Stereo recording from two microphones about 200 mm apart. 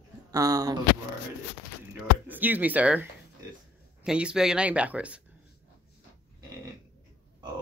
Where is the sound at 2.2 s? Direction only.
10° right (ahead or behind).